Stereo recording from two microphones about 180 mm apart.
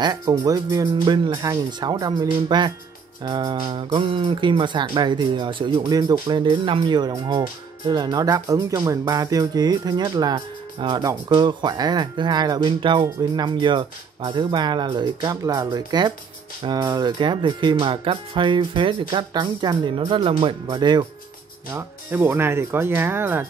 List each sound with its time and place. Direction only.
0.0 s speech: 20° right (ahead or behind)
21.7 s speech: 10° right (ahead or behind)